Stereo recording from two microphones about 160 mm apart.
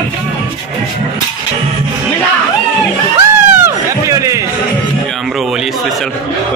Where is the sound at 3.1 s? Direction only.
20° right (ahead or behind).